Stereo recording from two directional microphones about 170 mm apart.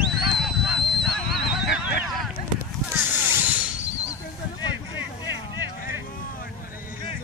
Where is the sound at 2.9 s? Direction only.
10° right (ahead or behind).